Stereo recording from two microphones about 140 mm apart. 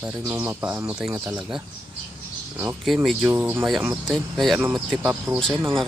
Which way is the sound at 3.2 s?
15° right (ahead or behind).